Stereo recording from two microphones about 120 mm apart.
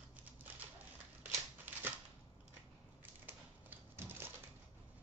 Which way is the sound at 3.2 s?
15° right (ahead or behind).